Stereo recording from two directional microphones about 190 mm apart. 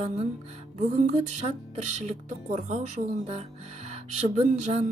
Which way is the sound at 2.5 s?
40° right (ahead or behind).